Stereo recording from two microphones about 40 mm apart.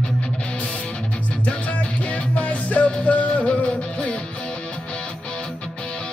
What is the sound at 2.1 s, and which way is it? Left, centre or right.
Music, left.